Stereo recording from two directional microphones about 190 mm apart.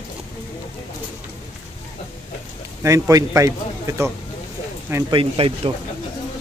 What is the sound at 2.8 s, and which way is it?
A man's voice, 15° right (ahead or behind).